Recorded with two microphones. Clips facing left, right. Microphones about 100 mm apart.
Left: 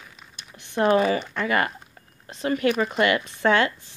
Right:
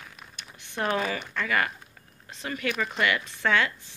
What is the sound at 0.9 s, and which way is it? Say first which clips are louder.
Speech: left 7 dB; 30° left (ahead or behind).